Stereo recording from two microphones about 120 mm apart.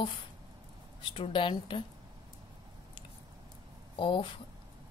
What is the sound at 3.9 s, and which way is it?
Speech, 40° left (ahead or behind).